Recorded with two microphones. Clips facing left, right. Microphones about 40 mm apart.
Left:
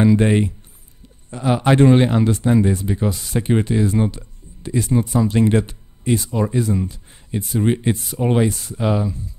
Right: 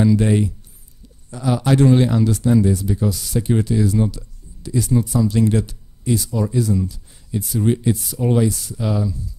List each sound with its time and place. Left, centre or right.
0.0 s speech: left